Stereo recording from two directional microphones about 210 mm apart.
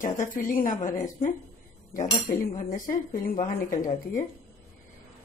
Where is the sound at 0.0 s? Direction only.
40° left (ahead or behind).